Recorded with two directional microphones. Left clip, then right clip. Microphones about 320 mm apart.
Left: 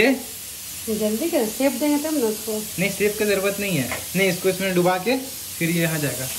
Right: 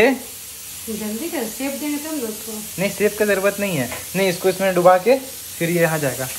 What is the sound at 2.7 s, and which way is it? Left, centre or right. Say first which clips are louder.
Speech: right 4 dB; right.